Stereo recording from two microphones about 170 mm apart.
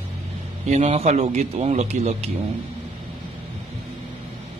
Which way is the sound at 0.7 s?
40° right (ahead or behind).